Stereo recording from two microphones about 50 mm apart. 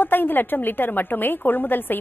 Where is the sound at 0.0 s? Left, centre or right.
Left.